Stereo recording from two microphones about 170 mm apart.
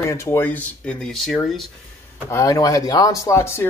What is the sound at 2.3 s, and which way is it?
Speech, 20° left (ahead or behind).